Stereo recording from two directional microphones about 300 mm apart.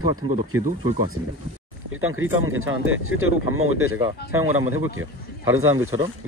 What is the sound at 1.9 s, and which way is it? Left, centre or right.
Speech, right.